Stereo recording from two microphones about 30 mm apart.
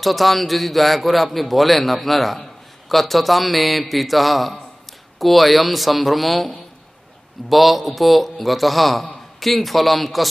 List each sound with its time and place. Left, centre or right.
0.0 s a man's voice: centre